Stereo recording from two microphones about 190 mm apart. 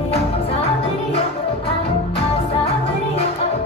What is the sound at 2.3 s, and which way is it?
Music, 30° left (ahead or behind).